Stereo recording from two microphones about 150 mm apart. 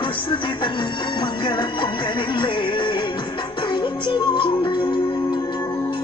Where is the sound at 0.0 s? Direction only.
35° left (ahead or behind).